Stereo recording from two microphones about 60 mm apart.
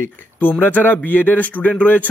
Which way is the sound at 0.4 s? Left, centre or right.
Left.